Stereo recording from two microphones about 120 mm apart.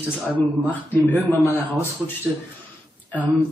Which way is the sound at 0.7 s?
15° left (ahead or behind).